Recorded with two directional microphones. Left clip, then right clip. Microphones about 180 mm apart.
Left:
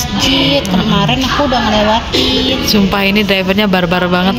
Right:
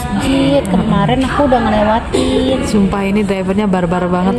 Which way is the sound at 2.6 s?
5° right (ahead or behind).